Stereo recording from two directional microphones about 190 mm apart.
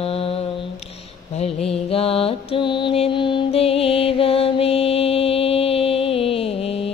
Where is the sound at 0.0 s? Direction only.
30° left (ahead or behind).